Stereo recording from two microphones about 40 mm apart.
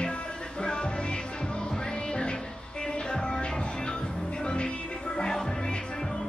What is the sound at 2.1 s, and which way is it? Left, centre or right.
Music, left.